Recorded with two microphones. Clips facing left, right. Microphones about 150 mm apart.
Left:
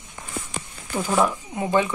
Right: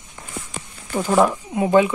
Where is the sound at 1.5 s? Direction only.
15° right (ahead or behind).